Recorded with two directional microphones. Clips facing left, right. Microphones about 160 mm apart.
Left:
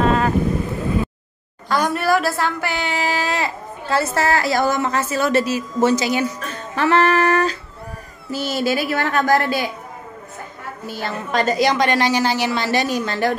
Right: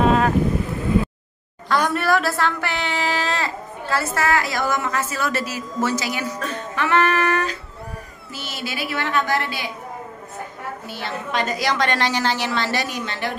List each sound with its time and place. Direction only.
0.0 s boat: 10° right (ahead or behind)
1.7 s speech: 5° left (ahead or behind)
3.9 s a woman's voice: 30° left (ahead or behind)
6.7 s humming: 35° left (ahead or behind)
8.3 s speech: 40° left (ahead or behind)
10.9 s speech: 45° left (ahead or behind)
11.5 s a woman's voice: 20° left (ahead or behind)
12.8 s speech: 40° left (ahead or behind)